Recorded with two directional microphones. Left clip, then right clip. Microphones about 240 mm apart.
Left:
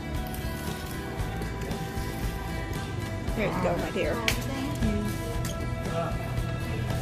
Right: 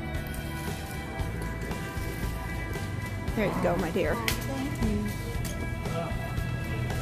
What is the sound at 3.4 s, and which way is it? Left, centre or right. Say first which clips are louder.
Speech: even; right.